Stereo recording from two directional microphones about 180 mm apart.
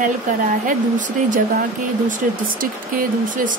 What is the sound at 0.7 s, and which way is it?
Speech, 45° right (ahead or behind).